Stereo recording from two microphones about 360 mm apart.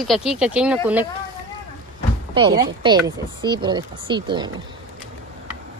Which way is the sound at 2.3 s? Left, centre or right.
Centre.